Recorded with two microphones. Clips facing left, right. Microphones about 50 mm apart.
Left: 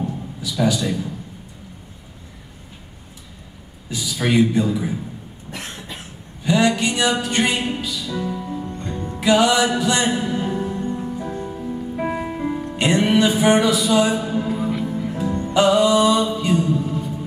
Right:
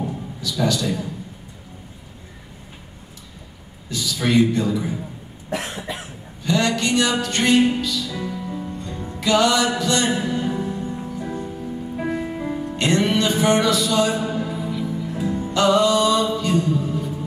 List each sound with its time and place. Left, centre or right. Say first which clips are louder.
0.4 s music: left 2 dB; centre
3.9 s music: even; centre
5.6 s cough: right 4 dB; centre
6.4 s music: left 3 dB; centre
9.2 s music: left 2 dB; centre
10.6 s music: left 2 dB; centre
11.3 s music: left 1 dB; centre
14.5 s music: left 3 dB; left
15.1 s music: right 1 dB; centre
15.5 s music: left 2 dB; centre